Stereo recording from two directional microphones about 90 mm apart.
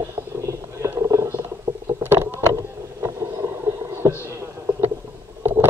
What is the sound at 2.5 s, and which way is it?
Vehicle, 35° right (ahead or behind).